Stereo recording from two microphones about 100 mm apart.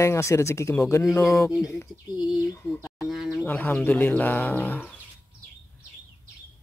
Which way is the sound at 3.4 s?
15° left (ahead or behind).